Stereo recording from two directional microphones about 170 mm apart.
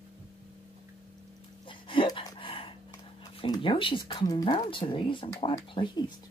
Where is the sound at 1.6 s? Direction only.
30° left (ahead or behind).